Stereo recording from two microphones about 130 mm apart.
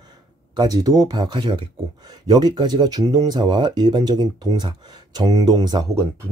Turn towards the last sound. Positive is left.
turn(degrees=-30)  # may be behind; listen again after turning